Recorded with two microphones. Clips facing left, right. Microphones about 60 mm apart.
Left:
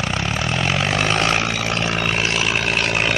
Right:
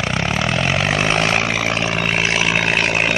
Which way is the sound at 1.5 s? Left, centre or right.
Right.